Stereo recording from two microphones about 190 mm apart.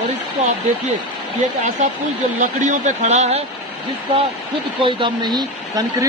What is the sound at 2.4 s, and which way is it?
A man's voice, 40° right (ahead or behind).